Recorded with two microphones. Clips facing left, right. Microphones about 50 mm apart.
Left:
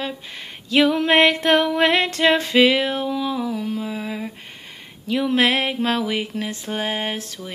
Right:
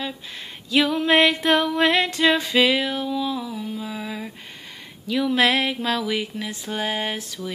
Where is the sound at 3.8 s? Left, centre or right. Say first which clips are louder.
Left 3 dB; left.